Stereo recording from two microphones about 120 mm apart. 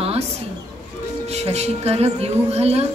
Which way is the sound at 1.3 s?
65° right (ahead or behind).